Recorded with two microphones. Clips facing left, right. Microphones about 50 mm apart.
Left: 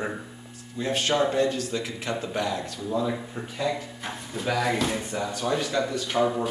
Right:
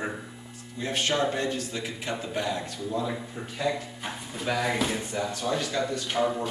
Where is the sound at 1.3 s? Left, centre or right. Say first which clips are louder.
Left 5 dB; right.